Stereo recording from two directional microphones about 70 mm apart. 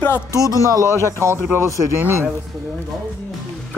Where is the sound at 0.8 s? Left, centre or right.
Right.